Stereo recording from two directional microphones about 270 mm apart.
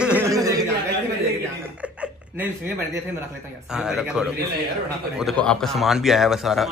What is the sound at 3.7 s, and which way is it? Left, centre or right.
Speech, centre.